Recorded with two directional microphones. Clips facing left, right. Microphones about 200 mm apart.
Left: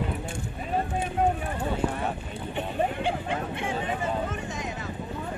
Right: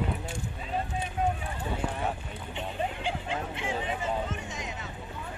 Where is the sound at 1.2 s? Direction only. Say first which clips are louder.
Left 4 dB; 60° left (ahead or behind).